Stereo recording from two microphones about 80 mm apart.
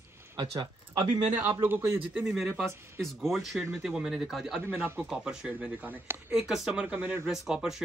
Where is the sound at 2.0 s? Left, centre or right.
Centre.